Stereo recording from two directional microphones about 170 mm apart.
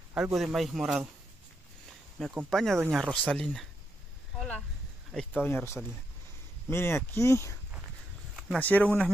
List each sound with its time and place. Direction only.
0.4 s speech: centre (ahead or behind)
2.2 s speech: centre (ahead or behind)
4.4 s a sound: 5° left (ahead or behind)
5.1 s speech: 10° left (ahead or behind)
8.5 s speech: 10° left (ahead or behind)